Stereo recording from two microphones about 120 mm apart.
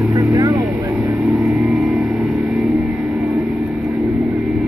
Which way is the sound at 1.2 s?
5° right (ahead or behind).